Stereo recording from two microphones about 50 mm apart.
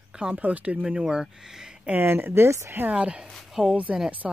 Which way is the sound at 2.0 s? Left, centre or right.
Right.